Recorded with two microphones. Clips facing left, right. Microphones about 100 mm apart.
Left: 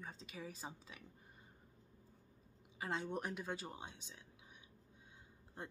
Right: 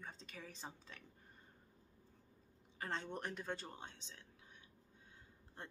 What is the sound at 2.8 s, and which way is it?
Speech, 5° left (ahead or behind).